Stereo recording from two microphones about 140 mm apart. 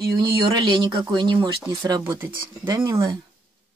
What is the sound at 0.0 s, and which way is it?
Speech, 35° right (ahead or behind).